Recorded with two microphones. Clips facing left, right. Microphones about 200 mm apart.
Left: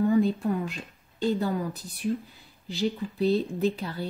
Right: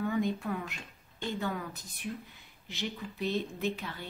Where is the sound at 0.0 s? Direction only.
35° left (ahead or behind).